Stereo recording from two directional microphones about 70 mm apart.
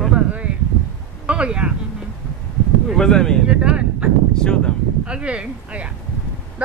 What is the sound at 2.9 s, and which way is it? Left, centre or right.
Speech, centre.